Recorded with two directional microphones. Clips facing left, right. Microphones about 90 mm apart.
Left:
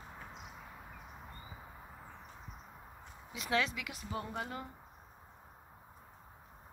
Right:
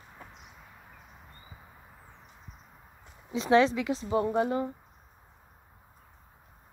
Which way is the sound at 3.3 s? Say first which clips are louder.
Right 12 dB; 30° right (ahead or behind).